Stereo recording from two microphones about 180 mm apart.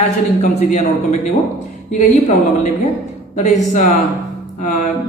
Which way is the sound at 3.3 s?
40° left (ahead or behind).